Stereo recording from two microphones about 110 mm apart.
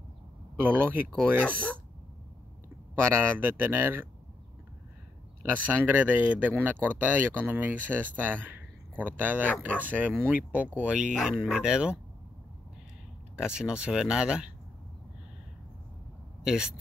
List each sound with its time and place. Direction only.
0.6 s speech: 20° right (ahead or behind)
1.4 s speech: 10° left (ahead or behind)
3.0 s speech: 20° right (ahead or behind)
5.9 s speech: 15° right (ahead or behind)
13.4 s speech: 5° right (ahead or behind)
16.4 s speech: 5° right (ahead or behind)